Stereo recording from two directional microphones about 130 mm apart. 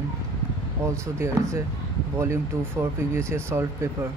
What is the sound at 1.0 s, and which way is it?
Speech, 20° right (ahead or behind).